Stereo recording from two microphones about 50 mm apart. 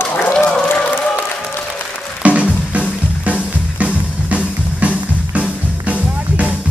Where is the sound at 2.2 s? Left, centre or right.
Right.